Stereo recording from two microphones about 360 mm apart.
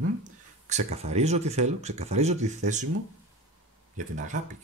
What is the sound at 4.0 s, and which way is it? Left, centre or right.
Speech, right.